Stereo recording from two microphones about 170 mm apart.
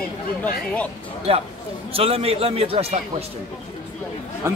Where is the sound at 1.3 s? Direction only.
35° right (ahead or behind).